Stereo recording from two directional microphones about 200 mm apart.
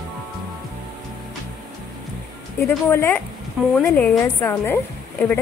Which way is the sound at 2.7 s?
10° left (ahead or behind).